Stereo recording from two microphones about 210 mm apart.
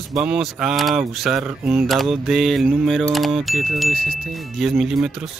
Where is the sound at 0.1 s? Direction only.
Centre (ahead or behind).